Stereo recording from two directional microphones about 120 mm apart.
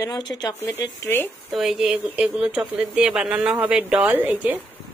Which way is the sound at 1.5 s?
5° right (ahead or behind).